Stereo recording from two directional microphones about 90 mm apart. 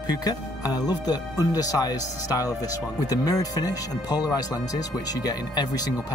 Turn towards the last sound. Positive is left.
turn(degrees=45)  # may be behind; listen again after turning